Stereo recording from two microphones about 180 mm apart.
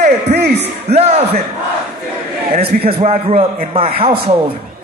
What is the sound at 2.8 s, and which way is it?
A man's voice, 35° right (ahead or behind).